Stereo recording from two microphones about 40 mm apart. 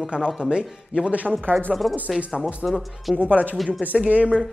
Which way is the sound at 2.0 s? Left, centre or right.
Right.